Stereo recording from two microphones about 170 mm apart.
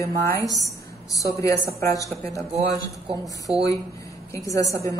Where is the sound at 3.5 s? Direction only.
35° right (ahead or behind).